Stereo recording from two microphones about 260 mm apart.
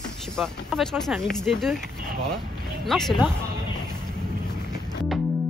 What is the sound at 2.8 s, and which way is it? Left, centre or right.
Speech, centre.